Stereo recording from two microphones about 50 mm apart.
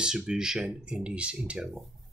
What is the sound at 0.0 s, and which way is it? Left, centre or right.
Speech, centre.